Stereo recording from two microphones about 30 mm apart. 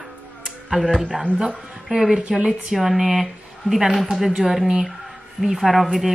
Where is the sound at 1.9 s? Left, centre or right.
Centre.